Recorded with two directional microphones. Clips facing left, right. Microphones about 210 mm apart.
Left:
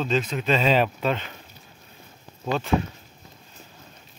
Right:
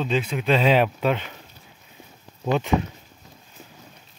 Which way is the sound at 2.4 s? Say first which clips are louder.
Right 3 dB; 15° right (ahead or behind).